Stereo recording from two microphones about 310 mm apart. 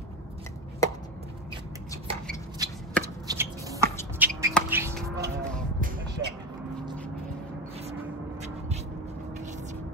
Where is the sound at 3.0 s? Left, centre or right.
Centre.